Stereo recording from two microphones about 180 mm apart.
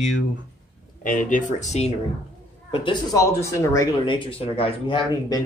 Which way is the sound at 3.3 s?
15° left (ahead or behind).